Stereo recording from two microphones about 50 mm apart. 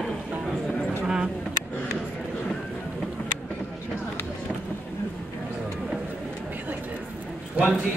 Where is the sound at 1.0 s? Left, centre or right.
Centre.